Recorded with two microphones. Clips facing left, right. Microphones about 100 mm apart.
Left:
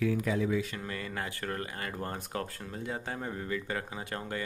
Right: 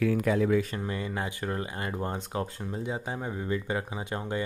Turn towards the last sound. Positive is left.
turn(degrees=-20)  # may be behind; listen again after turning